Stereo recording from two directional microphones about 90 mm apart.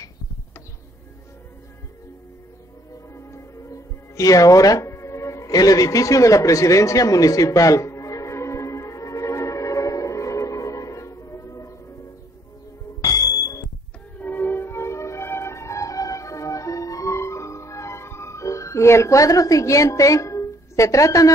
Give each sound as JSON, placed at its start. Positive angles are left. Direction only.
{"t": 3.2, "sound": "music", "side_deg": 35}
{"t": 13.0, "sound": "music", "side_deg": 45}
{"t": 14.1, "sound": "music", "side_deg": 20}